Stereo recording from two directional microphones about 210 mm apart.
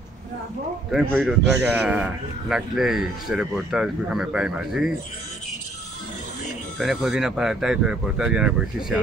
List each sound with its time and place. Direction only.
0.9 s speech: centre (ahead or behind)
6.8 s speech: centre (ahead or behind)